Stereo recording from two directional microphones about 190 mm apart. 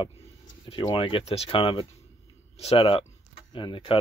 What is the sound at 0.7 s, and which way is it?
Speech, 25° left (ahead or behind).